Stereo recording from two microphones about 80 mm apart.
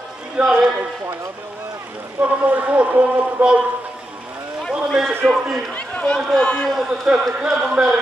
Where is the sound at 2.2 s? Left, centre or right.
Right.